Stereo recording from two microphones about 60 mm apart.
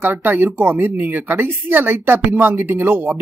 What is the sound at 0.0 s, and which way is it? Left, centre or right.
Speech, right.